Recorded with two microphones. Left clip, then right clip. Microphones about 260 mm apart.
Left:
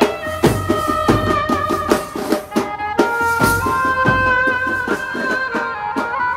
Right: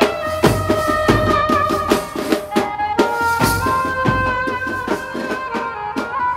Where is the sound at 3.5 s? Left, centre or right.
Right.